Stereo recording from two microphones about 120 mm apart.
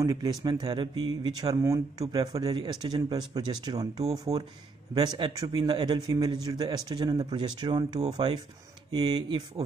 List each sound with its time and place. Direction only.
0.0 s speech: 30° right (ahead or behind)